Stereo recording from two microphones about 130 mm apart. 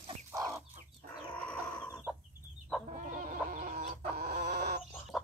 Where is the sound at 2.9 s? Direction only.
80° right; by 4.9 s 60° right (ahead or behind).